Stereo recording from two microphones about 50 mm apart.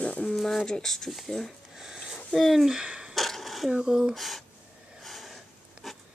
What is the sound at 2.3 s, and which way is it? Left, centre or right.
Speech, centre.